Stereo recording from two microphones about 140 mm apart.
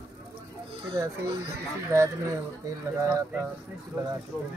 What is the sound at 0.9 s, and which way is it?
Speech, 30° right (ahead or behind).